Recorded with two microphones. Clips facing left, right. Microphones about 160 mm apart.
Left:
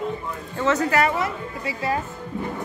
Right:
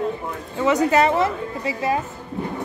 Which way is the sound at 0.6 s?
20° right (ahead or behind).